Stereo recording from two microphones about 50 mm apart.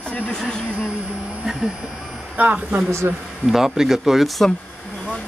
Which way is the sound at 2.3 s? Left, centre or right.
Right.